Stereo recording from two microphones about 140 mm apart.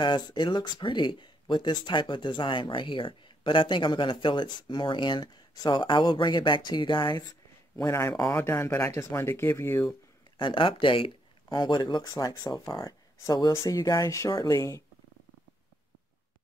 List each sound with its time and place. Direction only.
0.0 s speech: 35° left (ahead or behind)
7.7 s speech: 20° left (ahead or behind)
10.3 s speech: 35° left (ahead or behind)